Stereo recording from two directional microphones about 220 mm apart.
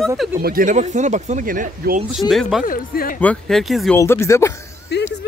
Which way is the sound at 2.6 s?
40° left (ahead or behind).